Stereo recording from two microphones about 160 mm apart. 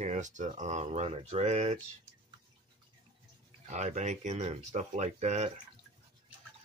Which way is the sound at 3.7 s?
50° right (ahead or behind).